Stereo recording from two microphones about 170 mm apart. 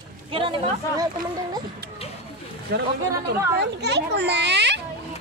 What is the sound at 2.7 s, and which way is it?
A child's voice, 75° right (ahead or behind).